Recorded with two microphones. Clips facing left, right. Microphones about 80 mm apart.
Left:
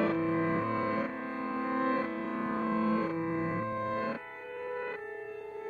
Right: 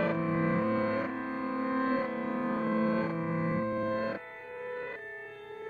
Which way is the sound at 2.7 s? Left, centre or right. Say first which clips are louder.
Even; right.